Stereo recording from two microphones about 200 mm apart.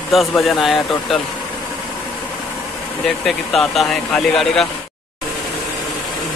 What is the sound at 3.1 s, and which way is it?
Speech, centre (ahead or behind).